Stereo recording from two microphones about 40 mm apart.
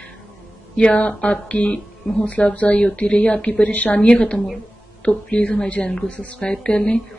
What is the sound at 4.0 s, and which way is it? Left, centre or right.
Speech, centre.